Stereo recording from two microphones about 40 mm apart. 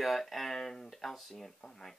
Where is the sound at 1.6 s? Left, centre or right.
Centre.